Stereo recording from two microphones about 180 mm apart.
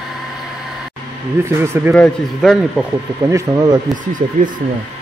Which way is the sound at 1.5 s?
15° right (ahead or behind).